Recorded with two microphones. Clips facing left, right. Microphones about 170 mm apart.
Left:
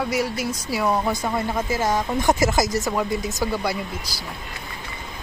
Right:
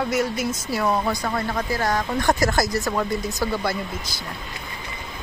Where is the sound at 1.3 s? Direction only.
15° left (ahead or behind).